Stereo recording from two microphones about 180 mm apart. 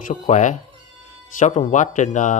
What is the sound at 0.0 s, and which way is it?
A man's voice, 45° left (ahead or behind).